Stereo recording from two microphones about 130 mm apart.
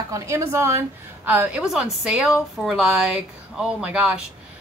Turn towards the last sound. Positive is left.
turn(degrees=-10)  # may be behind; listen again after turning